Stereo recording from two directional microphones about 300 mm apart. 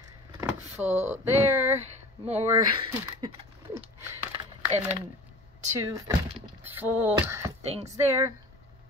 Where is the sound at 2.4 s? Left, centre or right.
Centre.